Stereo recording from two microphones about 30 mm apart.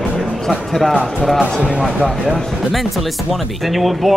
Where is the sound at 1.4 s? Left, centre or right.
Right.